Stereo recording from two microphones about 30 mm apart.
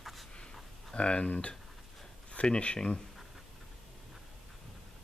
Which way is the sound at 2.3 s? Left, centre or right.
Left.